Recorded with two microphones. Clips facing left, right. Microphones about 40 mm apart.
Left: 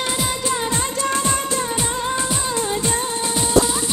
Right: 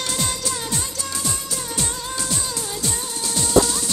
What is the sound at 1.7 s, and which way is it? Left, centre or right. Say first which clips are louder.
Music: left 6 dB; left.